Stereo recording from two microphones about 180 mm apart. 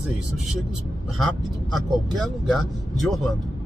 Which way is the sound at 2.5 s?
Centre (ahead or behind).